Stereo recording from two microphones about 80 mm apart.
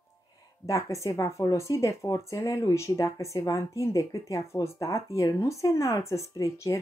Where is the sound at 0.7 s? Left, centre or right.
Left.